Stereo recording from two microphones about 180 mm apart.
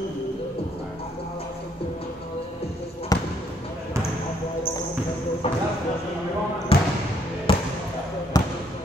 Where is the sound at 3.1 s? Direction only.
20° left (ahead or behind).